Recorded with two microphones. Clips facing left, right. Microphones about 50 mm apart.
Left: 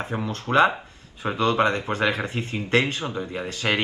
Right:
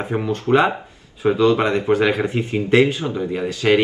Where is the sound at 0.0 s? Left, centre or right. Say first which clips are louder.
Right 7 dB; right.